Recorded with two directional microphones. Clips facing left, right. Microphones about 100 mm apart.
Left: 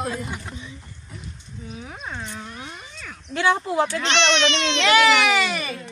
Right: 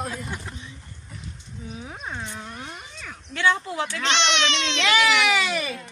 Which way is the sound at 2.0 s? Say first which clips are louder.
Left 1 dB; 5° right (ahead or behind).